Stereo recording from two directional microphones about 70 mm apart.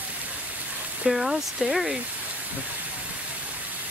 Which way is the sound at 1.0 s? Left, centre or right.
Centre.